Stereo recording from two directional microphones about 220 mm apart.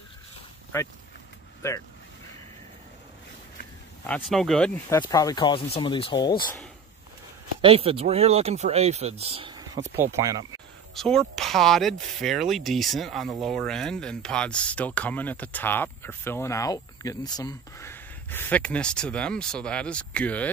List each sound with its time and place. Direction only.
4.0 s speech: 5° left (ahead or behind); by 6.3 s 20° left (ahead or behind)
7.6 s speech: 25° right (ahead or behind)
11.0 s speech: centre (ahead or behind)